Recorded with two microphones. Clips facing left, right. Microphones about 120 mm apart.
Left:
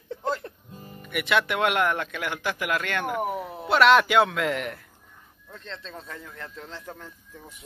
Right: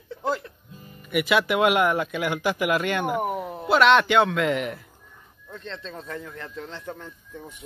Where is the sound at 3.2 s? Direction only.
Centre (ahead or behind).